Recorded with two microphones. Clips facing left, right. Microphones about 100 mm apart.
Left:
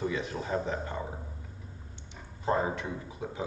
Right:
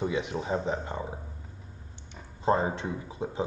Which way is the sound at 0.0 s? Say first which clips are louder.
Right 3 dB; 20° right (ahead or behind).